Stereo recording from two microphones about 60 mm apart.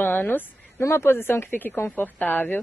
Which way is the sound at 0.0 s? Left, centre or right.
Left.